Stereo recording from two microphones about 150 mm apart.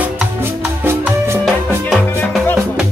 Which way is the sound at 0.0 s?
15° right (ahead or behind).